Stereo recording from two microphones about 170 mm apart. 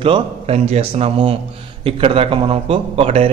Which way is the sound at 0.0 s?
35° right (ahead or behind).